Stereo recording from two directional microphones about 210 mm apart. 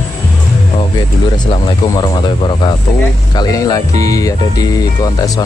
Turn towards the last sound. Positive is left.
turn(degrees=15)  # may be behind; listen again after turning